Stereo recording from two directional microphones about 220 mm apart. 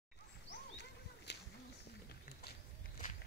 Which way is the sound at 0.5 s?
50° left (ahead or behind).